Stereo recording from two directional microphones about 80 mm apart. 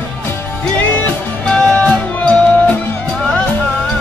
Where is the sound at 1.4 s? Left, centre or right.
Centre.